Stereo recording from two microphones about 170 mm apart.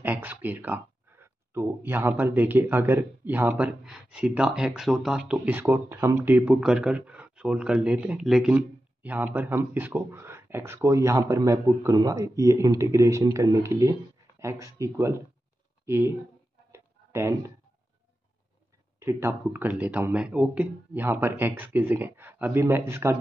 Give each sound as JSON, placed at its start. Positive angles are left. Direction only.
{"t": 0.0, "sound": "speech", "side_deg": -10}
{"t": 6.4, "sound": "speech", "side_deg": -5}
{"t": 16.7, "sound": "a sound", "side_deg": -15}
{"t": 18.9, "sound": "speech", "side_deg": -15}